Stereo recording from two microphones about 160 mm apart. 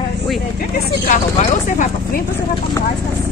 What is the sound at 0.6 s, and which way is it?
Speech, 55° left (ahead or behind).